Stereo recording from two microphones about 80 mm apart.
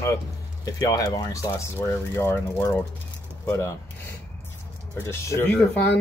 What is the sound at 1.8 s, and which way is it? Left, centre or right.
Speech, left.